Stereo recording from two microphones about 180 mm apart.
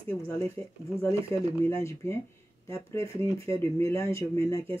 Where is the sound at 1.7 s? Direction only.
15° left (ahead or behind).